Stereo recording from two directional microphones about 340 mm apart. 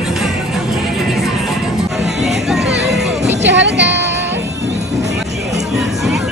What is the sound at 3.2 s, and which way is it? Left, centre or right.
Music, right.